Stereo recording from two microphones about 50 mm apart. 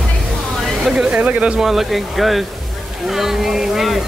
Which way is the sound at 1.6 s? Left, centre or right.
Centre.